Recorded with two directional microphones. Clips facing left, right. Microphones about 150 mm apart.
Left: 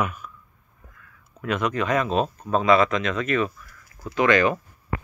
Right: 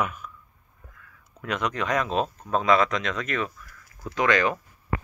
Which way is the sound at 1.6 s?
20° left (ahead or behind).